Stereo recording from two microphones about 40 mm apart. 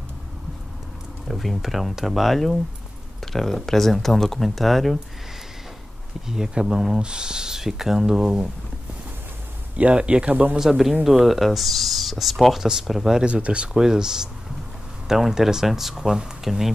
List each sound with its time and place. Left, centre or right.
1.3 s speech: centre
6.2 s speech: centre
9.8 s speech: right
10.6 s speech: centre
12.5 s speech: centre
13.2 s speech: right
13.7 s speech: centre